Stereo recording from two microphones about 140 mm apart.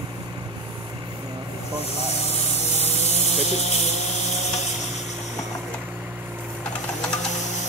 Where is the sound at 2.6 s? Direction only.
50° left (ahead or behind).